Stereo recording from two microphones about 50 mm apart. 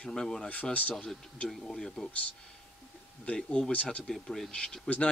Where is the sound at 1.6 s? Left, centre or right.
Centre.